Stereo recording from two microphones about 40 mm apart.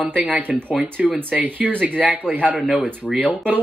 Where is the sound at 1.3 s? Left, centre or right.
Right.